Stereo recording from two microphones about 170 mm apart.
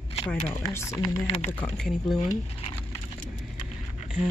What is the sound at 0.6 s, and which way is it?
Speech, 15° left (ahead or behind).